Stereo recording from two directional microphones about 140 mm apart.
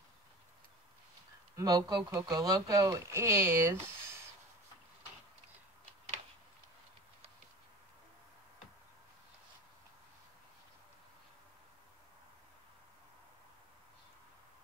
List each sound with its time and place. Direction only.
1.6 s speech: 25° right (ahead or behind)